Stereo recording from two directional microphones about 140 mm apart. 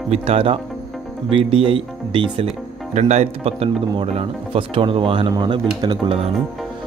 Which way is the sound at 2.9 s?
55° right (ahead or behind).